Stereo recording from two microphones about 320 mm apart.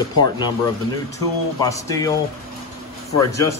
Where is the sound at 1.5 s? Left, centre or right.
Centre.